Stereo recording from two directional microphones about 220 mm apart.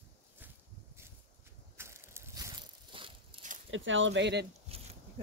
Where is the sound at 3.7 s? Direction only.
60° right (ahead or behind).